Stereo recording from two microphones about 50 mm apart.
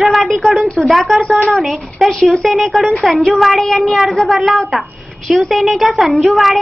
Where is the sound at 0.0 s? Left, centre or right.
Centre.